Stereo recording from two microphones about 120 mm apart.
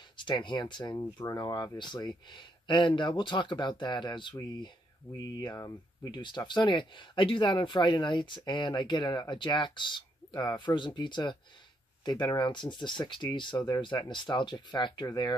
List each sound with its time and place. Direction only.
0.2 s speech: 40° left (ahead or behind)